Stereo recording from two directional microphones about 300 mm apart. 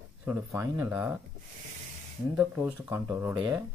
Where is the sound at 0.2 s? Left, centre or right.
Centre.